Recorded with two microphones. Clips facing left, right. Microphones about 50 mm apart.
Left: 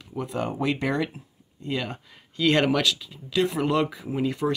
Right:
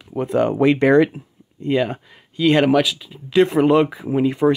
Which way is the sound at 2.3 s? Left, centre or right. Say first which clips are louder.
Right 6 dB; centre.